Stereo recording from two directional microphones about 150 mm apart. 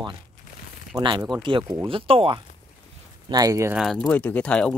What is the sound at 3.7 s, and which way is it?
Speech, 5° left (ahead or behind).